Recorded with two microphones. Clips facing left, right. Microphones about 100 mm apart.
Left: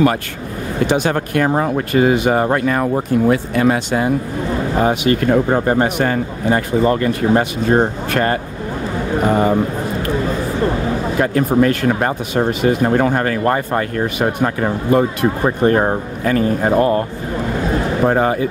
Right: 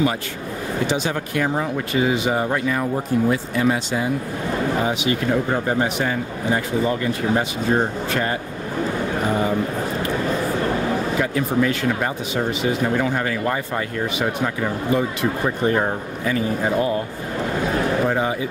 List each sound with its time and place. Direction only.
0.8 s speech: 55° left (ahead or behind)
11.1 s speech: 50° left (ahead or behind)
18.0 s speech: 50° left (ahead or behind)